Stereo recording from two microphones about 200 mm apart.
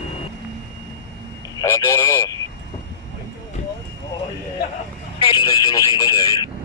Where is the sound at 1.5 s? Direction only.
15° left (ahead or behind).